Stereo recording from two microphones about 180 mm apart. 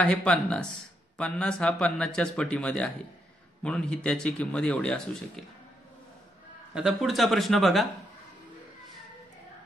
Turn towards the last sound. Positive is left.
turn(degrees=0)  # may be behind; listen again after turning